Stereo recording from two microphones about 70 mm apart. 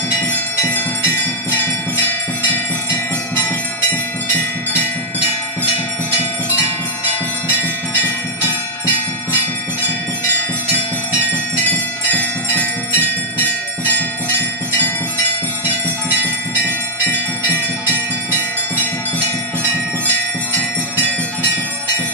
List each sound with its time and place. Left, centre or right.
0.2 s bell: left
11.6 s music: left